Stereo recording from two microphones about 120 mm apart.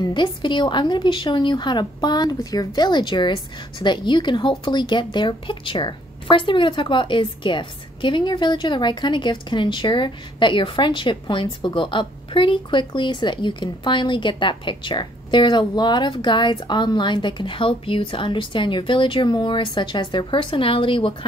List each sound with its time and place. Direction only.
0.0 s speech: 40° left (ahead or behind)